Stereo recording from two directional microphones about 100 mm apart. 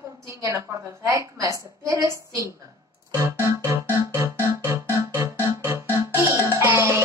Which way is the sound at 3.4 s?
30° right (ahead or behind).